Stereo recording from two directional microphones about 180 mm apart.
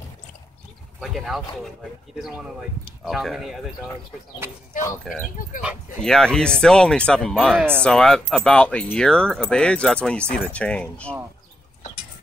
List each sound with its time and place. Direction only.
1.0 s speech: centre (ahead or behind)
5.1 s speech: 5° left (ahead or behind)
7.5 s speech: 10° right (ahead or behind)
7.8 s speech: 5° left (ahead or behind)